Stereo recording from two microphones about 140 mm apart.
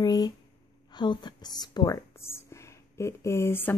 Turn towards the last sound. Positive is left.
turn(degrees=15)  # may be behind; listen again after turning